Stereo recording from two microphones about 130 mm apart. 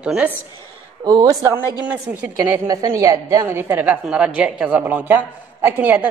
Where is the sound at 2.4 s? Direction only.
25° right (ahead or behind).